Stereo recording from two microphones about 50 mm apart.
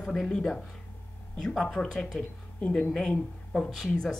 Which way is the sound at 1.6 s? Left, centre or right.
Centre.